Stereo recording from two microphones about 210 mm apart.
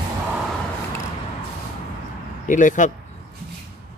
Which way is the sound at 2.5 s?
35° left (ahead or behind).